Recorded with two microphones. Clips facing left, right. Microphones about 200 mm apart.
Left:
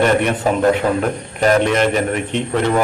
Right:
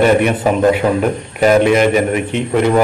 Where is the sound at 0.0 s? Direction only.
10° right (ahead or behind).